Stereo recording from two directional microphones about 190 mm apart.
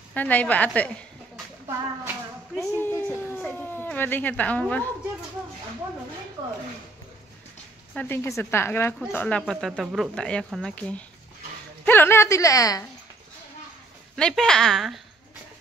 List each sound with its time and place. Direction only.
0.1 s a woman's voice: 10° left (ahead or behind)
2.5 s dog: 10° left (ahead or behind)
7.9 s speech: 10° left (ahead or behind)
14.1 s speech: 5° left (ahead or behind)